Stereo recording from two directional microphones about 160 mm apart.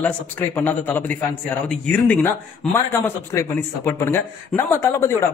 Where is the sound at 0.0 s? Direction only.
10° left (ahead or behind).